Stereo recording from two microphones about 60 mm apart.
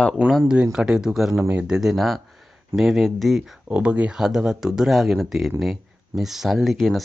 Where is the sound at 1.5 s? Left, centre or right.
Centre.